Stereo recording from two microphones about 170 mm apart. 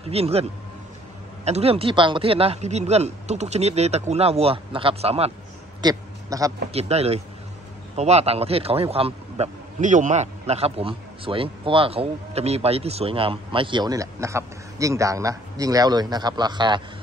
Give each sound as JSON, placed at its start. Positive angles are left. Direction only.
{"t": 0.1, "sound": "speech", "side_deg": -35}
{"t": 5.8, "sound": "a sound", "side_deg": -20}
{"t": 6.7, "sound": "speech", "side_deg": -35}